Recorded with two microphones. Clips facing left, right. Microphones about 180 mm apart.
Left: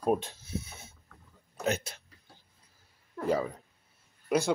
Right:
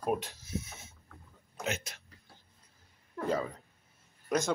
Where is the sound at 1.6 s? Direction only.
35° left (ahead or behind).